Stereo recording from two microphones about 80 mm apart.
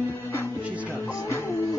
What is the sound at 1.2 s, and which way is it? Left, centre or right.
Music, left.